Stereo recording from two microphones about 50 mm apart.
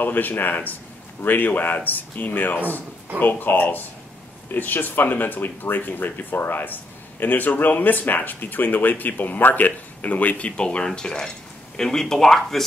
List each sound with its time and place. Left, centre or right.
0.0 s speech: left; by 12.6 s centre